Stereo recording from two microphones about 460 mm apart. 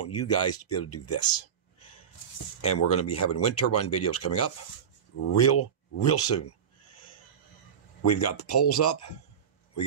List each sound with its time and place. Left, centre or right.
0.0 s speech: left
2.7 s speech: left
8.0 s speech: left